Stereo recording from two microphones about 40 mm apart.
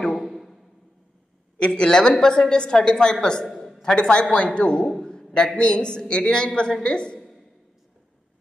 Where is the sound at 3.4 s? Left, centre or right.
Centre.